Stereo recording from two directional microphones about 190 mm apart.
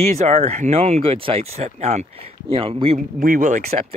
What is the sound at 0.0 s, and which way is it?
Speech, 35° right (ahead or behind).